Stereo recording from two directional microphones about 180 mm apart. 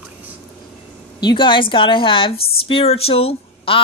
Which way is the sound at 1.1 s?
25° left (ahead or behind).